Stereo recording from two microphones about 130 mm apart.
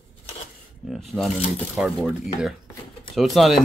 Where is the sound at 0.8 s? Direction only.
Centre (ahead or behind).